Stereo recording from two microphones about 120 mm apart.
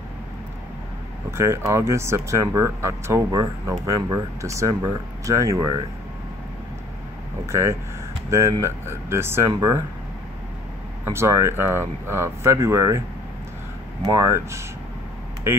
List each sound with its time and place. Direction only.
1.3 s speech: 20° right (ahead or behind)
7.4 s speech: 25° right (ahead or behind)
11.1 s speech: 20° right (ahead or behind)
14.0 s speech: 25° right (ahead or behind)